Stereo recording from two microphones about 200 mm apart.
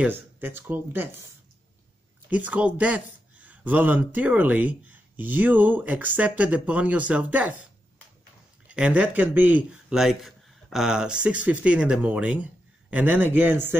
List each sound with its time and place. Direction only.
0.0 s speech: 10° right (ahead or behind)
2.2 s speech: 10° right (ahead or behind)
8.6 s speech: 5° right (ahead or behind)